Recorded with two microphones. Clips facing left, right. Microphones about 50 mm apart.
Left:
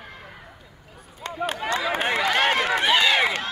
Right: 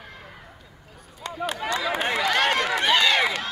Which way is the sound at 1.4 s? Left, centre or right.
Left.